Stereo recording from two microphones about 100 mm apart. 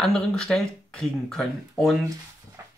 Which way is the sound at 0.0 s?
5° left (ahead or behind).